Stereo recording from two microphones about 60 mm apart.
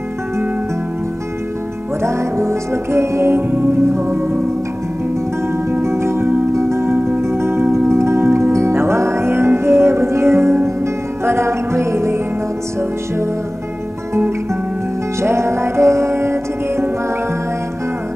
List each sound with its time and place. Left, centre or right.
2.0 s music: right
3.4 s music: right
3.9 s music: right
5.7 s music: right
15.2 s music: right